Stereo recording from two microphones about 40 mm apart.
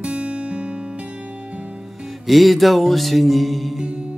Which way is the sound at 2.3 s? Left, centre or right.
Centre.